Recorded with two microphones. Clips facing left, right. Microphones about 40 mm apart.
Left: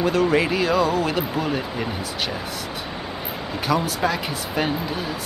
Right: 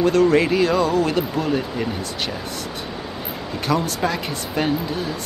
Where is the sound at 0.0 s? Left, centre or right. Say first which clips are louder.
Right 3 dB; centre.